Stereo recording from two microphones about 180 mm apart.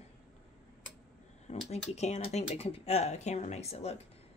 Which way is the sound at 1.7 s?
40° left (ahead or behind).